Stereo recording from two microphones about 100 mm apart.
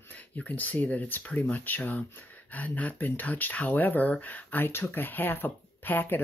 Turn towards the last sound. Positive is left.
turn(degrees=20)  # may be behind; listen again after turning